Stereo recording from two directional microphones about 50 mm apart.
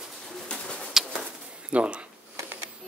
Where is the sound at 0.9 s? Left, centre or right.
Centre.